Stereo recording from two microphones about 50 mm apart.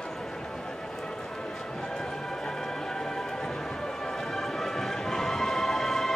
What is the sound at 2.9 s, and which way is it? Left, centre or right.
Music, centre.